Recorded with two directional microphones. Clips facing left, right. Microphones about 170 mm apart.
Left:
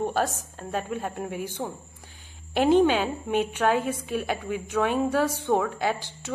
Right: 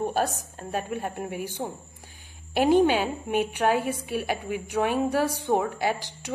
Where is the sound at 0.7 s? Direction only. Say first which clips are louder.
Even; 15° right (ahead or behind).